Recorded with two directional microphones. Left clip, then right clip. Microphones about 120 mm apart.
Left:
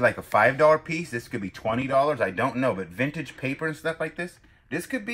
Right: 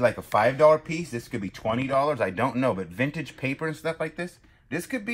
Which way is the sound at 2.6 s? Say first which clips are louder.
Even; 25° right (ahead or behind).